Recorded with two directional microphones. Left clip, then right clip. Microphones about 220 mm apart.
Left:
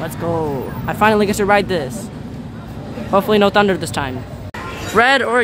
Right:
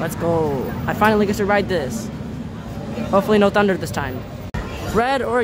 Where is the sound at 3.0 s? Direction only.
10° left (ahead or behind).